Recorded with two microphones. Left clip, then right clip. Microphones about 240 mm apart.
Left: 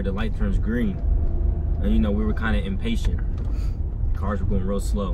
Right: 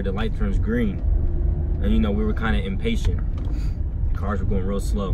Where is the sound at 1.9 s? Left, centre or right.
Centre.